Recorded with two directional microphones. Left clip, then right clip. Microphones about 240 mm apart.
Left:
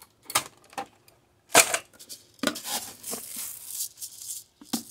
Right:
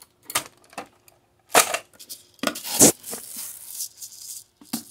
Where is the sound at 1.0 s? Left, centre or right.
Centre.